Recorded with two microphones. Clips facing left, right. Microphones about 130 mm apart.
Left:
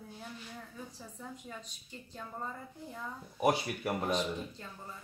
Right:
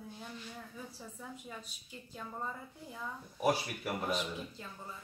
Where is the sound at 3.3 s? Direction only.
20° left (ahead or behind).